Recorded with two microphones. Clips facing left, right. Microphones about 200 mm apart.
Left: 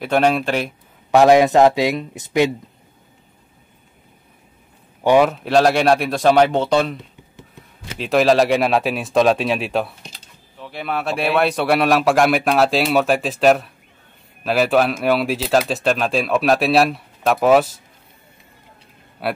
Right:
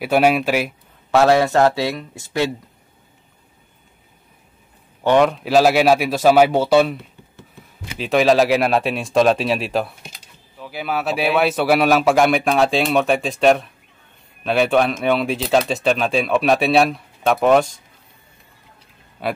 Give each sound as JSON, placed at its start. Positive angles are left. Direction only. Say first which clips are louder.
{"t": 0.0, "sound": "speech", "louder": "right 1 dB", "side_deg": -5}
{"t": 1.1, "sound": "speech", "louder": "left 3 dB", "side_deg": 15}
{"t": 5.0, "sound": "speech", "louder": "left 1 dB", "side_deg": 5}
{"t": 8.0, "sound": "speech", "louder": "even", "side_deg": 0}
{"t": 19.2, "sound": "speech", "louder": "even", "side_deg": 5}